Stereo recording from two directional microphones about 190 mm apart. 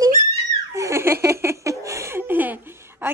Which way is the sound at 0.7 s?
15° right (ahead or behind).